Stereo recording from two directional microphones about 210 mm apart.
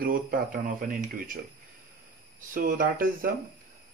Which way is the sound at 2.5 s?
40° right (ahead or behind).